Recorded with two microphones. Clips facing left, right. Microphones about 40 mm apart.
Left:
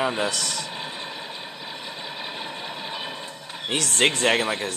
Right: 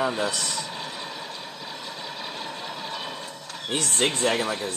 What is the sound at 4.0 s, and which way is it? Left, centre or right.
Speech, left.